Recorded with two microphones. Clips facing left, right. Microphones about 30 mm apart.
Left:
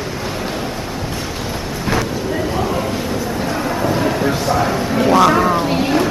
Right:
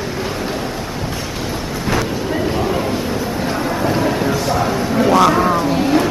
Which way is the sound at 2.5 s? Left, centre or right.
Centre.